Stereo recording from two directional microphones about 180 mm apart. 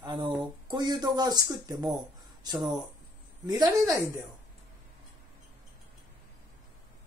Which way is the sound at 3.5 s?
20° right (ahead or behind).